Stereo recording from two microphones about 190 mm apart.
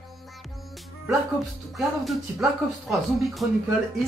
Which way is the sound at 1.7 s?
Centre (ahead or behind).